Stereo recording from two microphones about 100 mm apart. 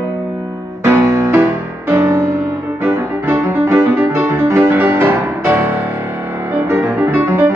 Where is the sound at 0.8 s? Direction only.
30° right (ahead or behind).